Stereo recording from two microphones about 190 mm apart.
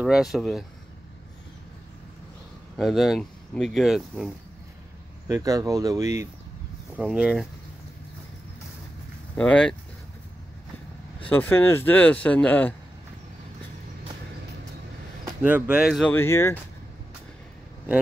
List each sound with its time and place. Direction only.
0.0 s speech: centre (ahead or behind)
2.8 s speech: centre (ahead or behind)
5.3 s speech: 20° right (ahead or behind)
7.0 s speech: 5° right (ahead or behind)
9.3 s speech: 5° left (ahead or behind)
11.2 s speech: 10° left (ahead or behind)
15.4 s speech: 10° right (ahead or behind)
16.1 s speech: 15° left (ahead or behind)